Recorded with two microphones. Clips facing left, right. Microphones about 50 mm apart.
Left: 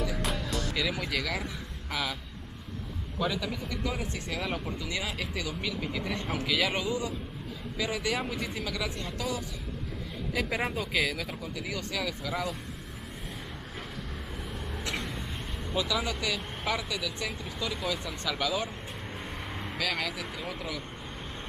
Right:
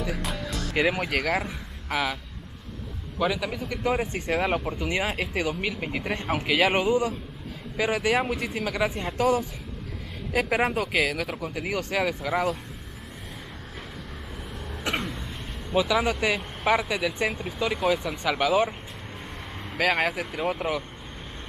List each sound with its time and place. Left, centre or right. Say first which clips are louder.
0.2 s music: even; centre
0.7 s speech: right 10 dB; right
1.9 s speech: right 6 dB; right
3.2 s a man's voice: right 5 dB; centre
3.6 s speech: right 7 dB; right
10.9 s a man's voice: right 4 dB; centre
11.4 s speech: right 7 dB; right
11.9 s speech: right 8 dB; centre
14.3 s vehicle: right 1 dB; centre
15.0 s a sound: right 2 dB; centre
15.7 s speech: right 7 dB; right
19.1 s vehicle: even; centre
19.8 s speech: right 9 dB; right
20.3 s speech: right 9 dB; right